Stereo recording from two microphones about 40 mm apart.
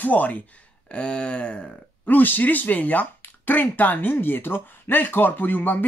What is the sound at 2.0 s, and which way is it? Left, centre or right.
Speech, left.